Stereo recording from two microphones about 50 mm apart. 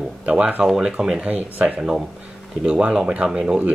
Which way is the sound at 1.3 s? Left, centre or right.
Right.